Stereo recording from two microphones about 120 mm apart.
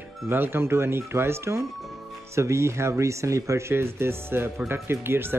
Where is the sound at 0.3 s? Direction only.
20° right (ahead or behind).